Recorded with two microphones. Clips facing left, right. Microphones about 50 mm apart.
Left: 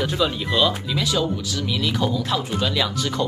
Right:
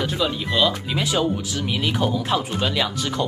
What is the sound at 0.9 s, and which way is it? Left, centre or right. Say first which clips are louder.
Speech: right 1 dB; right.